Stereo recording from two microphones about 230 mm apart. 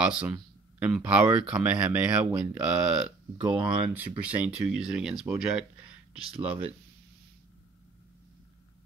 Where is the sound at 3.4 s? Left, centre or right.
Right.